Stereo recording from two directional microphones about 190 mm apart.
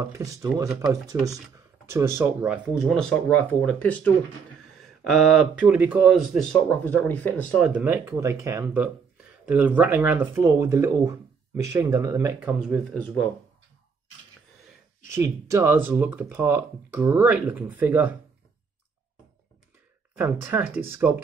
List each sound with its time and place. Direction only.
0.0 s speech: 15° right (ahead or behind); by 7.4 s 10° left (ahead or behind)
7.5 s speech: 5° right (ahead or behind)
15.1 s speech: 15° right (ahead or behind)
20.2 s speech: 10° right (ahead or behind)